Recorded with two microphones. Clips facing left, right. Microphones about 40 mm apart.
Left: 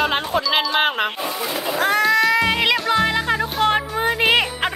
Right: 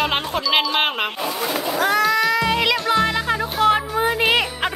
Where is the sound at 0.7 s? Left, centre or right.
Centre.